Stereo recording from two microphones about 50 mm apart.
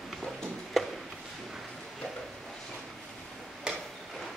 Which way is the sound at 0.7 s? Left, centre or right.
Centre.